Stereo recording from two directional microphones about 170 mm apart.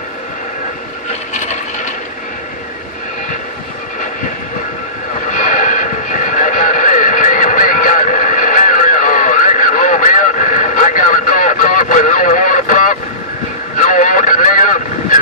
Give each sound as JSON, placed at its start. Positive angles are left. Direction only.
{"t": 5.3, "sound": "neigh", "side_deg": 50}
{"t": 13.7, "sound": "vehicle", "side_deg": 50}